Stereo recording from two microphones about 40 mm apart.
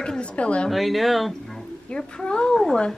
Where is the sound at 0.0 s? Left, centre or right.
Left.